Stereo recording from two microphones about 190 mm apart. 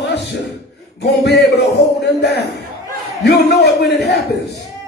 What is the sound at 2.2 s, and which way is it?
Speech, 60° left (ahead or behind).